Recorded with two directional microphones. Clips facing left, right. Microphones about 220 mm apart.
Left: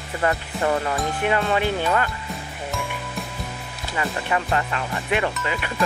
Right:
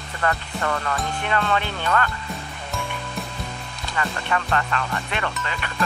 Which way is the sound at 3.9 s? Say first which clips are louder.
Left 1 dB; 15° left (ahead or behind).